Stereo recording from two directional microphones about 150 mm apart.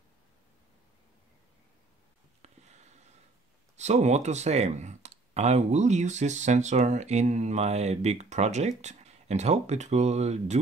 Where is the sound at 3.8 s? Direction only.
50° right (ahead or behind).